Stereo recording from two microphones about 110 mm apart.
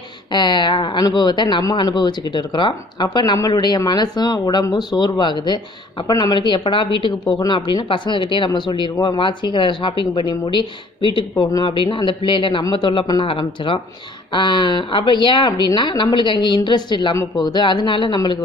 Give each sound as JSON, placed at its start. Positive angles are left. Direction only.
{"t": 0.3, "sound": "speech", "side_deg": 45}